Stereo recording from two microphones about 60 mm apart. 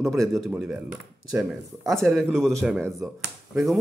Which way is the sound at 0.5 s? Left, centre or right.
Centre.